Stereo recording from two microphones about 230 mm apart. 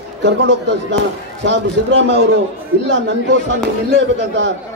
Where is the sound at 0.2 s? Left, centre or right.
Right.